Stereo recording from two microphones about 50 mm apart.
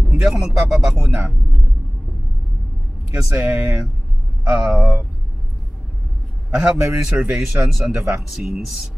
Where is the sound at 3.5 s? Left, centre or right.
Centre.